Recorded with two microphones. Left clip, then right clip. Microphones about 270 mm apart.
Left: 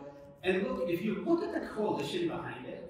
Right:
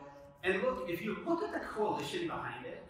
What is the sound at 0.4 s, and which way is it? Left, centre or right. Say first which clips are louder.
A man's voice: left 1 dB; centre.